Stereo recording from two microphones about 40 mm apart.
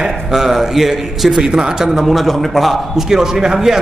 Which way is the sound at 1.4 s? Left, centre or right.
Centre.